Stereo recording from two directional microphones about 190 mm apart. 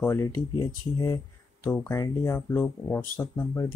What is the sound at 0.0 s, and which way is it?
Speech, 15° left (ahead or behind).